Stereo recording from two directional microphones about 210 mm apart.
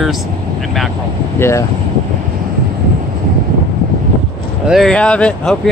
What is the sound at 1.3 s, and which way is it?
Speech, 10° left (ahead or behind).